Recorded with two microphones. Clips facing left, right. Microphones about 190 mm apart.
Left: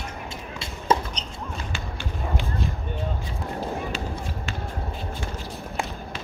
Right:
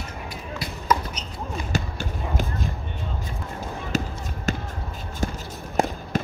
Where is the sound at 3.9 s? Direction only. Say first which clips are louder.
Right 3 dB; 45° right (ahead or behind).